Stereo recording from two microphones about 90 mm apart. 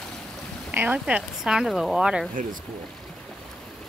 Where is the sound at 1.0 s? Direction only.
10° right (ahead or behind).